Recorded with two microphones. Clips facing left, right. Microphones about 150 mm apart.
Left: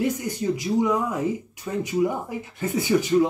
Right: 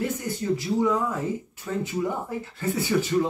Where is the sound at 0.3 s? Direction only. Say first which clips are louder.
Left 1 dB; 15° left (ahead or behind).